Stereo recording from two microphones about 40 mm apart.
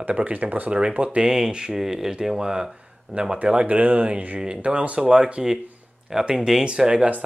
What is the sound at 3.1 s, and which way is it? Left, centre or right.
Speech, right.